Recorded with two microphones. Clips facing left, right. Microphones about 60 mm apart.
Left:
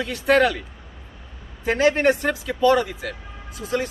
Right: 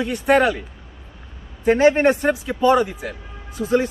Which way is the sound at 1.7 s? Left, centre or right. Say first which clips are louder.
Right 2 dB; right.